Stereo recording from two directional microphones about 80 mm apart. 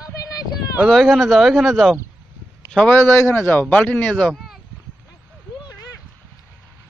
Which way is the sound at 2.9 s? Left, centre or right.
Left.